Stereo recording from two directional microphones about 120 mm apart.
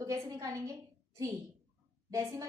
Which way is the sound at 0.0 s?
25° right (ahead or behind).